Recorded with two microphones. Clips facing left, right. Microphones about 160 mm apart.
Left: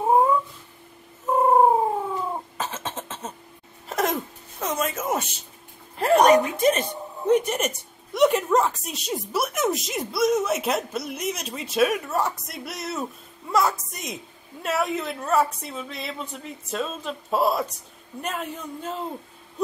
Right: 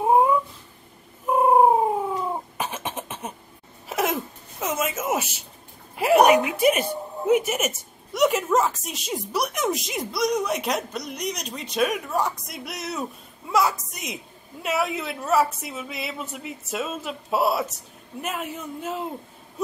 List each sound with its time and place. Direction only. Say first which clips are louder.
0.0 s cat: right 1 dB; 10° right (ahead or behind)
1.3 s cat: right 1 dB; 15° right (ahead or behind)
2.5 s cough: right 1 dB; 15° right (ahead or behind)
3.9 s a sound: even; 5° right (ahead or behind)
5.9 s a woman's voice: even; 10° right (ahead or behind)